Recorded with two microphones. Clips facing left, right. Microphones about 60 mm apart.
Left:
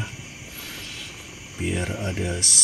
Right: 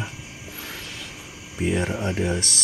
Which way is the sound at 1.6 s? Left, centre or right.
Centre.